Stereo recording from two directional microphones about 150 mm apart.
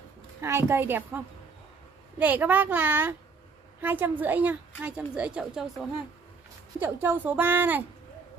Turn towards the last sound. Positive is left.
turn(degrees=-10)  # may be behind; listen again after turning